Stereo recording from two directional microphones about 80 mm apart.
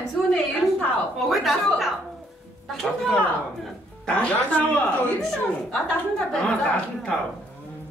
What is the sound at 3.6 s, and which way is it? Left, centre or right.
Speech, centre.